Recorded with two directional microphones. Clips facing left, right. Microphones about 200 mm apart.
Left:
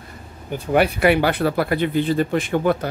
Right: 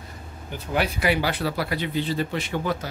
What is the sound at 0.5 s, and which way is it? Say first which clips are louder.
Speech: left 8 dB; 60° left (ahead or behind).